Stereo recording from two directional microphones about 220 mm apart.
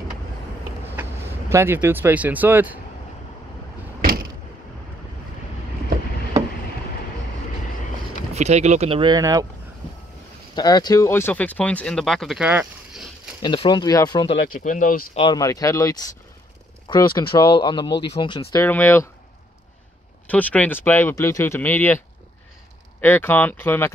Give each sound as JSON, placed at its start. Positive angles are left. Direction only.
{"t": 1.5, "sound": "speech", "side_deg": -10}
{"t": 8.4, "sound": "speech", "side_deg": -30}
{"t": 10.5, "sound": "speech", "side_deg": 20}
{"t": 13.4, "sound": "speech", "side_deg": 20}
{"t": 15.1, "sound": "speech", "side_deg": 20}
{"t": 20.2, "sound": "speech", "side_deg": 5}